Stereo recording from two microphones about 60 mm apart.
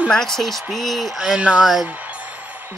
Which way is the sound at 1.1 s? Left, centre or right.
Centre.